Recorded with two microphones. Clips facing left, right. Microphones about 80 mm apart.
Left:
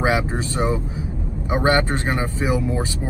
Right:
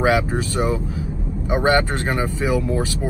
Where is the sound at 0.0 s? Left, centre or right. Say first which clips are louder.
Right 2 dB; centre.